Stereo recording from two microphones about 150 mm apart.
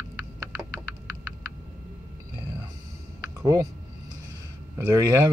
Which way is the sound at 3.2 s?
20° right (ahead or behind).